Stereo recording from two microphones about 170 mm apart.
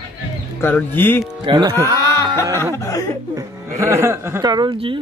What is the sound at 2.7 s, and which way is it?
Speech, 20° left (ahead or behind).